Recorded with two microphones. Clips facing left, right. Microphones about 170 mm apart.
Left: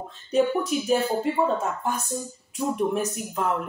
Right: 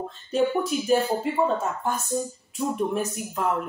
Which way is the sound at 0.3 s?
Centre (ahead or behind).